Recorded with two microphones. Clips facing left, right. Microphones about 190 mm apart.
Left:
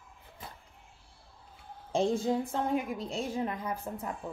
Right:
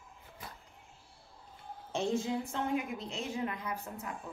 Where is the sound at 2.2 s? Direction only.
45° left (ahead or behind).